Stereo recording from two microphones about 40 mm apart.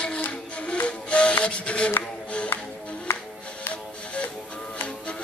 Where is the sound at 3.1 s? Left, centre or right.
Left.